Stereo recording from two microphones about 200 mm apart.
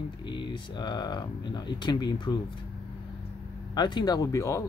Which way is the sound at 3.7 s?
20° left (ahead or behind).